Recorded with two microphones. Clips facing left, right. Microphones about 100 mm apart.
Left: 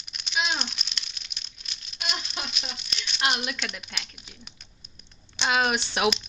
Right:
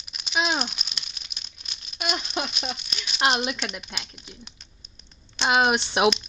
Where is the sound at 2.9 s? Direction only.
10° right (ahead or behind).